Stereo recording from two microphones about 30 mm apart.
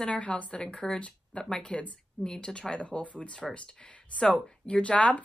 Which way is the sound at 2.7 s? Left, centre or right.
Left.